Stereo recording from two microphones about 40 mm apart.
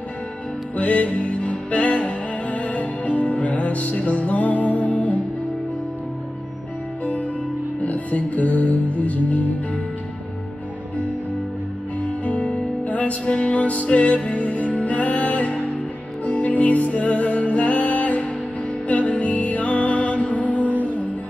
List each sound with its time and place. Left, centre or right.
0.7 s music: left
7.8 s music: left
12.0 s music: left